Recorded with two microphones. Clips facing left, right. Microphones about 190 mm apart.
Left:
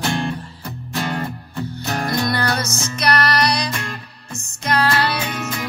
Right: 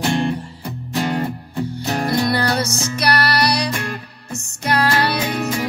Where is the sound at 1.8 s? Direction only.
25° right (ahead or behind).